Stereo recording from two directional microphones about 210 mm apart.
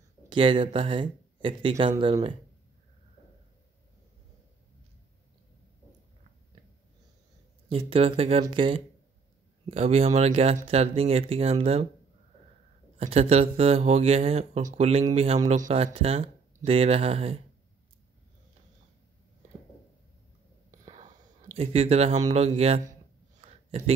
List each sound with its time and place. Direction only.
0.3 s speech: 25° right (ahead or behind)
7.7 s speech: 25° right (ahead or behind)
13.0 s speech: 30° right (ahead or behind)
20.8 s whispering: 30° right (ahead or behind)
21.5 s speech: 30° right (ahead or behind)
23.4 s a sound: 30° right (ahead or behind)